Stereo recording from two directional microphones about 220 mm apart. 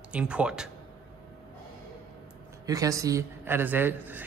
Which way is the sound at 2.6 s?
15° right (ahead or behind).